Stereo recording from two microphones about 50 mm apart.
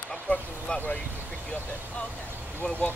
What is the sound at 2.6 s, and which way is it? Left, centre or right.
Speech, left.